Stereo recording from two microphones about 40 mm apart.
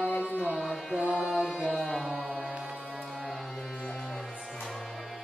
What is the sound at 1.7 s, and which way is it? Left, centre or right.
Music, centre.